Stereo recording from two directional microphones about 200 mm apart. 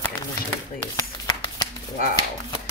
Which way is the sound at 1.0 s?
20° left (ahead or behind).